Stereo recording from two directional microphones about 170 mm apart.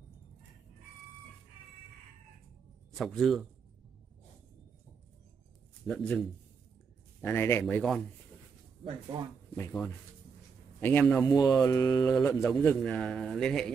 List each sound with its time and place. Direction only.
3.0 s speech: centre (ahead or behind)
5.9 s speech: centre (ahead or behind)
7.6 s speech: 5° left (ahead or behind)
9.1 s speech: 30° right (ahead or behind)
9.6 s speech: 10° left (ahead or behind)
11.2 s mantra: 25° left (ahead or behind)
12.3 s speech: 15° left (ahead or behind)
12.6 s speech: 5° left (ahead or behind)